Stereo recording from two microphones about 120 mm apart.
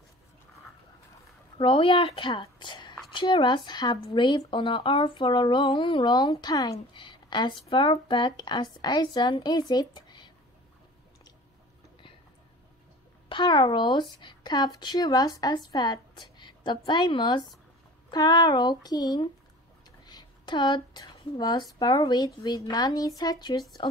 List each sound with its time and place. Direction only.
1.6 s a woman's voice: 45° left (ahead or behind)
13.3 s speech: 40° left (ahead or behind)
20.1 s a sound: 40° left (ahead or behind)
21.7 s speech: 35° left (ahead or behind)
23.8 s a woman's voice: 45° left (ahead or behind)